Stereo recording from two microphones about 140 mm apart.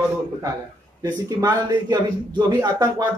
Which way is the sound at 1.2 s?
30° right (ahead or behind).